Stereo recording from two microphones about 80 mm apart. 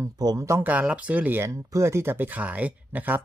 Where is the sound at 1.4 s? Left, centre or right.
Right.